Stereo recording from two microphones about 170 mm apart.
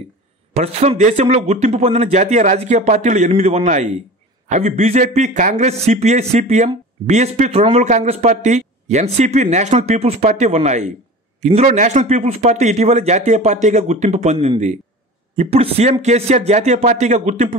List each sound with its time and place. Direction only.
0.5 s a man's voice: 40° right (ahead or behind)